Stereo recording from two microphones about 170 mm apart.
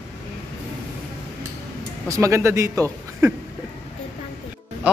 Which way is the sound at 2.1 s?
15° right (ahead or behind).